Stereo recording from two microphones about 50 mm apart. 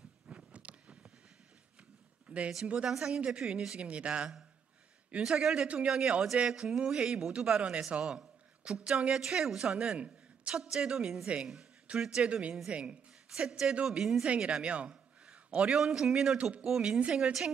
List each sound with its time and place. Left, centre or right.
0.5 s a sound: right
2.6 s speech: centre
2.9 s a man's voice: centre
5.4 s a man's voice: centre
10.6 s a man's voice: centre
12.2 s speech: right
13.3 s a man's voice: centre
14.2 s a man's voice: centre
15.7 s a man's voice: centre